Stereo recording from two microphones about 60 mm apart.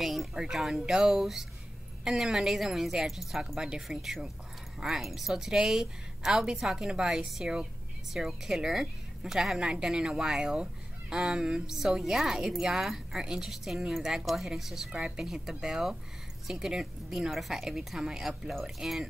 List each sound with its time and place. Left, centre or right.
0.0 s a woman's voice: centre